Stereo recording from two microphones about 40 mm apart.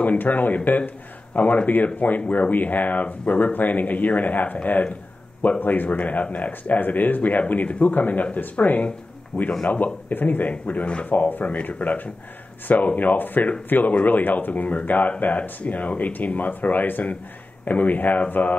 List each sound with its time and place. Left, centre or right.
0.0 s a man's voice: left
5.6 s speech: left
9.3 s a man's voice: left
10.0 s speech: left
11.4 s speech: left